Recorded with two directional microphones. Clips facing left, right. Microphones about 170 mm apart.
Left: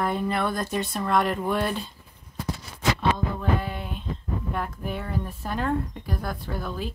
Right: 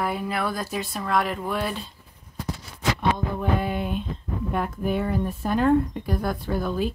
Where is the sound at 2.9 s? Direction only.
15° right (ahead or behind).